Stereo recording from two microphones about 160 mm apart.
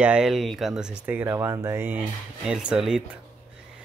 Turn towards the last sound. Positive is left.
turn(degrees=-5)  # may be behind; listen again after turning